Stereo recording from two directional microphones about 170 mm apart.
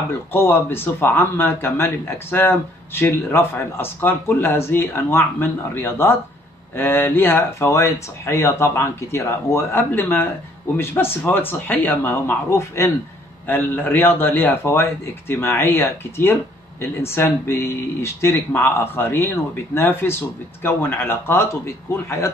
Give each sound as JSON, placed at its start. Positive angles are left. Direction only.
{"t": 0.3, "sound": "a man's voice", "side_deg": 15}